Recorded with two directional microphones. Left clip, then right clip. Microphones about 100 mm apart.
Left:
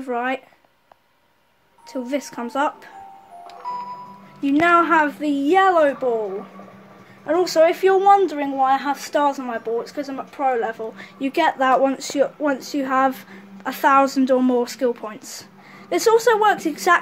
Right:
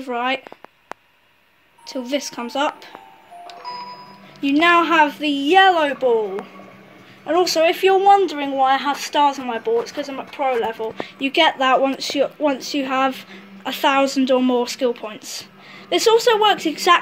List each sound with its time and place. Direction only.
1.9 s speech: 10° left (ahead or behind)
3.4 s music: 10° left (ahead or behind)
4.4 s a woman's voice: centre (ahead or behind)
7.2 s a woman's voice: centre (ahead or behind)
10.4 s speech: 15° right (ahead or behind)
10.7 s speech: 10° left (ahead or behind)